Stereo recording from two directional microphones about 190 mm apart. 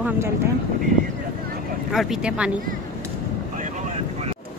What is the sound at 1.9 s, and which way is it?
Speech, centre (ahead or behind).